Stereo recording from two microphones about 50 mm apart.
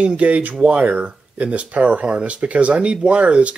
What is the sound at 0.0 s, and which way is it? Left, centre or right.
Speech, right.